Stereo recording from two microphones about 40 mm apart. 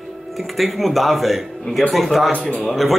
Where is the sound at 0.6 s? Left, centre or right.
Centre.